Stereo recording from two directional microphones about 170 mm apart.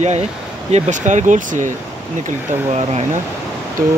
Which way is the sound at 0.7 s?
45° right (ahead or behind).